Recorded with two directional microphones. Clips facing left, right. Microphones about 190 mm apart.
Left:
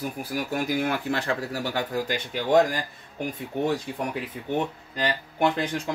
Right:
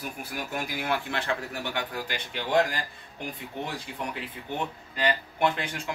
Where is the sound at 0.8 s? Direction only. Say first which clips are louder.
Left 4 dB; 40° left (ahead or behind).